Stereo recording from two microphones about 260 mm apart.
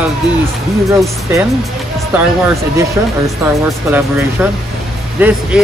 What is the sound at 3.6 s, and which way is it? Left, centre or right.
Speech, centre.